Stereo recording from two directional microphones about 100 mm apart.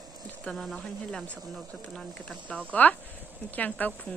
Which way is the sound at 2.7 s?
15° left (ahead or behind).